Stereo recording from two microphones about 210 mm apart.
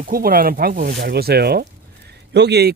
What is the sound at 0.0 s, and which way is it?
Speech, 40° right (ahead or behind).